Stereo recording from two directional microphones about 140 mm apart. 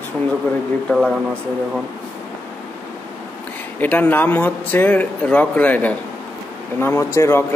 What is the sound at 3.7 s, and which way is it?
A man's voice, 10° left (ahead or behind).